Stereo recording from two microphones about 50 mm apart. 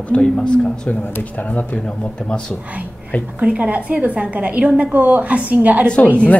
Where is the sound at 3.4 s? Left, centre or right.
Right.